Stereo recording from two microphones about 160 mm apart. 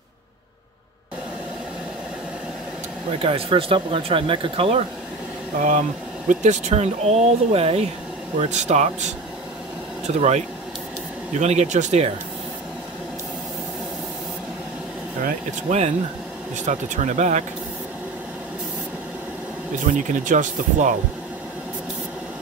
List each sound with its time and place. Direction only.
3.2 s speech: 35° right (ahead or behind)
5.6 s speech: 50° right (ahead or behind)
15.2 s speech: 45° right (ahead or behind)
19.9 s speech: 55° right (ahead or behind)